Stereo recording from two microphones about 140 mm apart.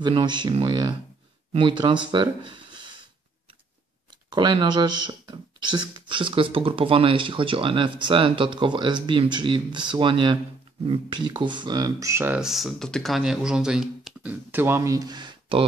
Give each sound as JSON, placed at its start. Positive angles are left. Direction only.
{"t": 0.0, "sound": "speech", "side_deg": -35}
{"t": 4.3, "sound": "speech", "side_deg": -30}
{"t": 12.4, "sound": "speech", "side_deg": 0}